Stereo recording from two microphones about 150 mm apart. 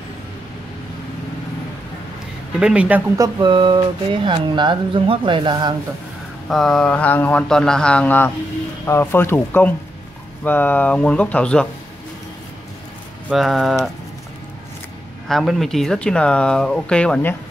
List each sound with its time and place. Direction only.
2.6 s speech: 10° right (ahead or behind)
3.2 s speech: 30° right (ahead or behind)
6.5 s speech: 5° left (ahead or behind)
13.3 s speech: centre (ahead or behind)
15.2 s speech: centre (ahead or behind)